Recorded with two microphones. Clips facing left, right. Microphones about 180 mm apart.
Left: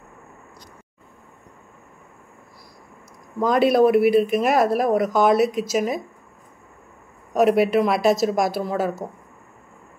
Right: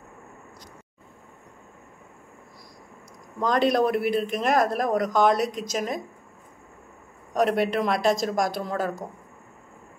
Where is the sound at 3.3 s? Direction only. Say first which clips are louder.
Left 5 dB; 5° left (ahead or behind).